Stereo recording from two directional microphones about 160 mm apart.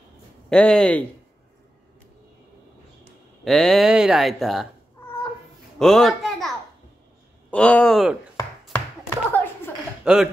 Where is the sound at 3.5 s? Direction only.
Centre (ahead or behind).